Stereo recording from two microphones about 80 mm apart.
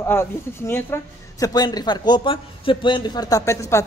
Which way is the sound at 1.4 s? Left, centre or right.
Left.